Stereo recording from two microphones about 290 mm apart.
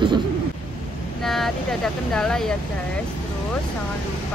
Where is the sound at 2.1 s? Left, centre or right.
Centre.